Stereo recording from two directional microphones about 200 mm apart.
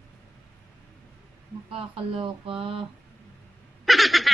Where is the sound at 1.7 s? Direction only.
25° right (ahead or behind).